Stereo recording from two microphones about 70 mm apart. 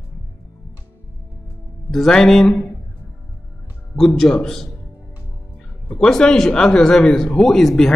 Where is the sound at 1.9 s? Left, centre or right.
Centre.